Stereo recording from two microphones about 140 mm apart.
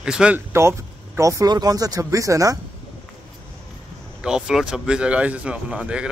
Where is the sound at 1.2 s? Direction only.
25° right (ahead or behind).